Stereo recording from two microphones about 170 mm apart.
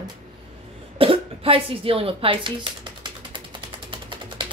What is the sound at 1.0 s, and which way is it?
Speech, 35° right (ahead or behind).